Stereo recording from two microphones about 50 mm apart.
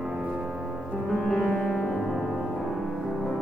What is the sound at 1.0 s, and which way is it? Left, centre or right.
Music, centre.